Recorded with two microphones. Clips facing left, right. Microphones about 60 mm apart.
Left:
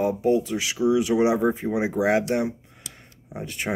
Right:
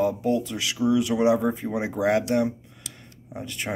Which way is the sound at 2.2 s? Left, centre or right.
Left.